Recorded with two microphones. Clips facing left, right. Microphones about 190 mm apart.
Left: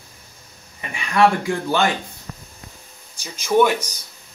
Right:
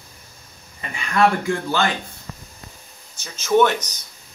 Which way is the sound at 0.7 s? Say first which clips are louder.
Left 2 dB; 15° left (ahead or behind).